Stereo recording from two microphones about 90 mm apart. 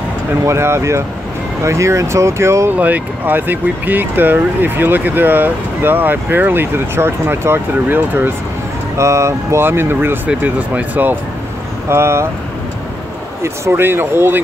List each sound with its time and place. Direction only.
0.5 s speech: 30° right (ahead or behind)
2.8 s speech: 20° right (ahead or behind)
8.9 s speech: 35° right (ahead or behind)
13.4 s speech: 25° right (ahead or behind)